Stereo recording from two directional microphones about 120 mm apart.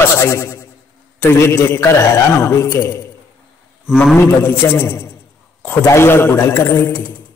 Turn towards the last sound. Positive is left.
turn(degrees=20)  # may be behind; listen again after turning